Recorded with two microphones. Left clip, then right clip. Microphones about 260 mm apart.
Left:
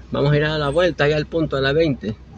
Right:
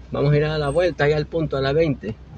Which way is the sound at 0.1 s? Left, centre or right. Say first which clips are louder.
Left 2 dB; centre.